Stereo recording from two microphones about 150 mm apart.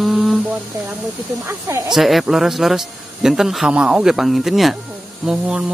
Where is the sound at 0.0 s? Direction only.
Centre (ahead or behind).